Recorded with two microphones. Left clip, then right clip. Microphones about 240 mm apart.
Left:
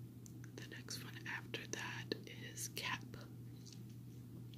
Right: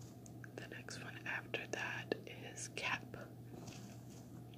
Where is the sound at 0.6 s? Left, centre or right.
Centre.